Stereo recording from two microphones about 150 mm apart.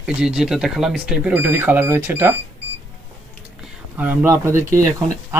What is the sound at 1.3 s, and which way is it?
Speech, 15° right (ahead or behind).